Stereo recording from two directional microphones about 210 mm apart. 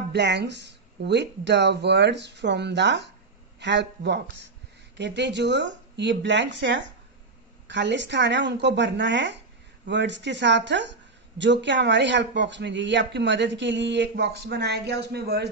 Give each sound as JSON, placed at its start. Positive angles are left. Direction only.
{"t": 0.1, "sound": "a man's voice", "side_deg": -55}